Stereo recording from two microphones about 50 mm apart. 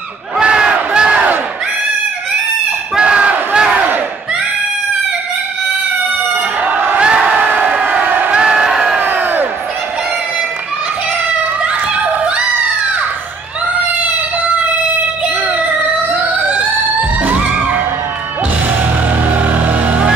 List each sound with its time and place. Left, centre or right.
0.4 s crowd: centre
0.9 s battle cry: right
3.0 s battle cry: right
3.7 s battle cry: right
6.3 s a sound: right
7.0 s crowd: right
8.4 s crowd: centre
8.9 s crowd: right
11.6 s a sound: right
15.2 s emergency vehicle: right